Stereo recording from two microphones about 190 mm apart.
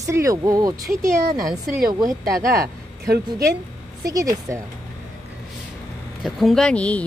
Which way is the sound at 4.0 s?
20° right (ahead or behind).